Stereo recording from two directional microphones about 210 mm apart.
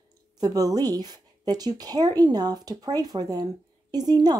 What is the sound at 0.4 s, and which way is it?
A woman's voice, 15° right (ahead or behind).